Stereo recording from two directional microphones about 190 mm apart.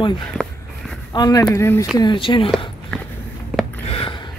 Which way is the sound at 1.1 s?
20° left (ahead or behind).